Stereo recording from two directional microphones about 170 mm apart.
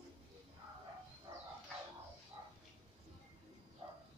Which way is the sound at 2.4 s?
20° right (ahead or behind).